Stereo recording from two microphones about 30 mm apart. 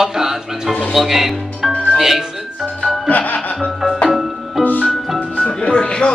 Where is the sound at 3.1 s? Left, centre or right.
Left.